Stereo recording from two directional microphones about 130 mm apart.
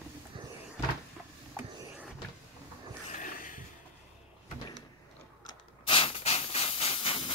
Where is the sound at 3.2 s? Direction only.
90° left.